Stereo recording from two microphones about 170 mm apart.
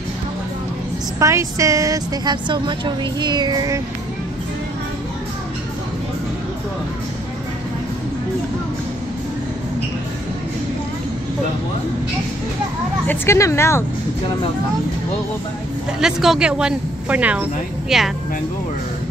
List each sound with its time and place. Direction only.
1.2 s a woman's voice: 20° right (ahead or behind)
13.0 s speech: 10° left (ahead or behind)
16.0 s speech: 5° right (ahead or behind)